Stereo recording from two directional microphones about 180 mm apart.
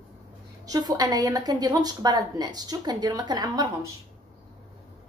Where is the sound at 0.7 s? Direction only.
20° right (ahead or behind).